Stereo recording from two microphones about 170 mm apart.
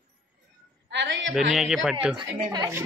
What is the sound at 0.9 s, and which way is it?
Speech, 90° right.